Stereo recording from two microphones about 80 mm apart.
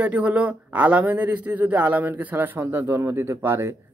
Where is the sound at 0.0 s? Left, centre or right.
Centre.